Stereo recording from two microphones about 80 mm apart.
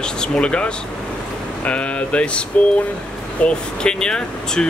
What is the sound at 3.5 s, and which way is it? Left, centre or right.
Speech, centre.